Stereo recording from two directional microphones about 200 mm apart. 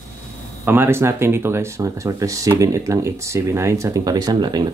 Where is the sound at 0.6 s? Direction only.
10° right (ahead or behind).